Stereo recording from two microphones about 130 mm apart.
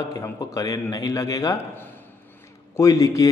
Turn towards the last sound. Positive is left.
turn(degrees=25)  # may be behind; listen again after turning